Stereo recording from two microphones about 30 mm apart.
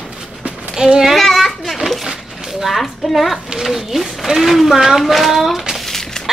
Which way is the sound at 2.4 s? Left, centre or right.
Centre.